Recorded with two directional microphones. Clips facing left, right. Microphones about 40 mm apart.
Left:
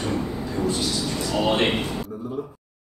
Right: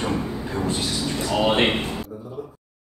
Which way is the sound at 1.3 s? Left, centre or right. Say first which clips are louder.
Right 2 dB; right.